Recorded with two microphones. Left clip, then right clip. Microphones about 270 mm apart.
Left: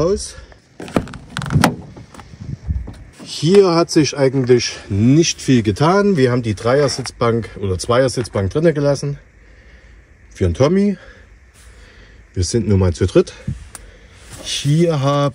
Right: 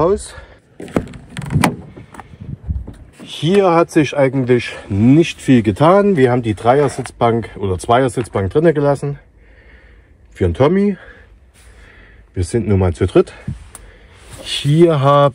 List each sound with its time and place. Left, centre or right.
0.0 s speech: centre
0.8 s a sound: centre
1.5 s vehicle: left
3.5 s speech: centre
10.3 s speech: centre
12.4 s speech: centre
14.4 s speech: centre